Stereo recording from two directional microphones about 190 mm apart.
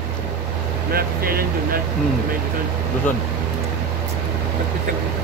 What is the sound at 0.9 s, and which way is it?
Speech, 50° right (ahead or behind).